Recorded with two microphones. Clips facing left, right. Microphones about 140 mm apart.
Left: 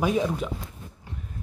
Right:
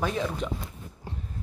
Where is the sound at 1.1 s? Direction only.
30° right (ahead or behind).